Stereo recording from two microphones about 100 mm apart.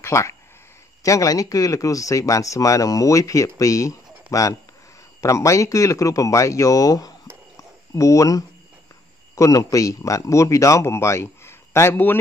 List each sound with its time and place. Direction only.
0.0 s speech: 30° left (ahead or behind)
7.5 s a sound: 35° left (ahead or behind)
9.3 s speech: 35° left (ahead or behind)